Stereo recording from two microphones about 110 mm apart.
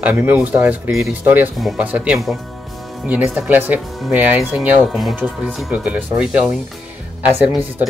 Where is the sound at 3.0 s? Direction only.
15° right (ahead or behind).